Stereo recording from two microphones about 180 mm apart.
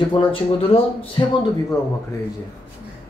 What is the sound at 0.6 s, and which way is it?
Speech, 30° left (ahead or behind).